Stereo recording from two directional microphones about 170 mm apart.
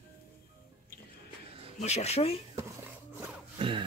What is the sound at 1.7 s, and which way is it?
Speech, 40° left (ahead or behind).